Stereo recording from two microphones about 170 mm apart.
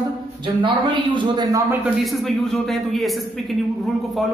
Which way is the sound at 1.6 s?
10° right (ahead or behind).